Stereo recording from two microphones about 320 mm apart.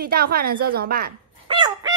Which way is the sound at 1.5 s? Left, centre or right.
Centre.